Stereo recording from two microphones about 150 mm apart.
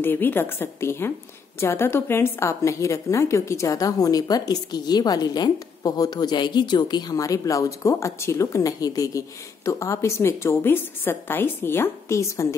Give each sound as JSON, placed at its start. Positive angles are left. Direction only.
{"t": 0.0, "sound": "a woman's voice", "side_deg": 15}